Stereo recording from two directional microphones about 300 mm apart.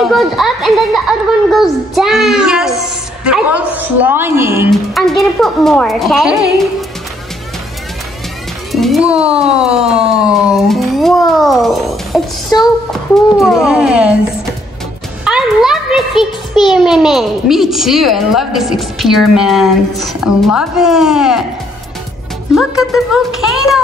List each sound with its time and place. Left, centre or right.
0.0 s a child's voice: centre
8.7 s a child's voice: centre
9.4 s siren: centre
9.7 s a child's voice: centre
15.2 s a sound: centre
16.6 s a child's voice: centre
22.5 s a child's voice: centre